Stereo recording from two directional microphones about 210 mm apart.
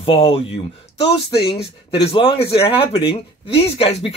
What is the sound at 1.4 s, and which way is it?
Speech, 25° left (ahead or behind).